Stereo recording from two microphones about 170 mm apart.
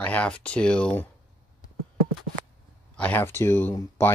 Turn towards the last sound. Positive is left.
turn(degrees=15)  # may be behind; listen again after turning